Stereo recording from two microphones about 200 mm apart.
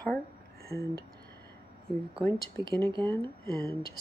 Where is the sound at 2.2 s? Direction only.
20° right (ahead or behind).